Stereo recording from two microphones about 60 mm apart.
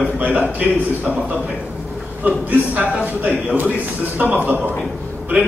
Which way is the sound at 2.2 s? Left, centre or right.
Right.